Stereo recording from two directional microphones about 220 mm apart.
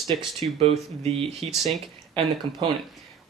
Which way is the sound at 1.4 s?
25° right (ahead or behind).